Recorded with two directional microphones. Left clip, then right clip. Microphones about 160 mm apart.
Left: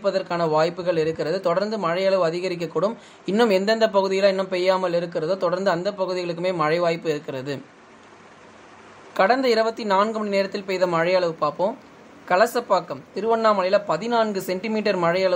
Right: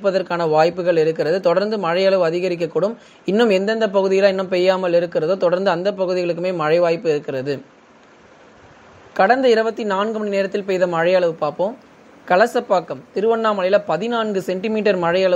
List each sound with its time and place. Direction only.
0.0 s a man's voice: 20° right (ahead or behind)
9.1 s a man's voice: 10° right (ahead or behind)
10.3 s a man's voice: 10° right (ahead or behind)